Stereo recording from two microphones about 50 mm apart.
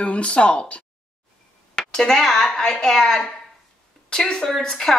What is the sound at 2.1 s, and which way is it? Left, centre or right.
Dishes, centre.